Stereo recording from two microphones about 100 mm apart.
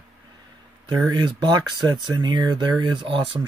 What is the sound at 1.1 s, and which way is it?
Speech, 45° right (ahead or behind).